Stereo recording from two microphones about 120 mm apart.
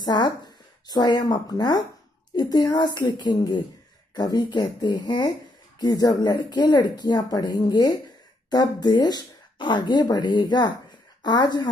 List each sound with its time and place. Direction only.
0.0 s speech: 35° left (ahead or behind)